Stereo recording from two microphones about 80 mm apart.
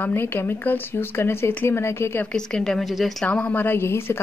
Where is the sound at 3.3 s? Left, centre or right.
Centre.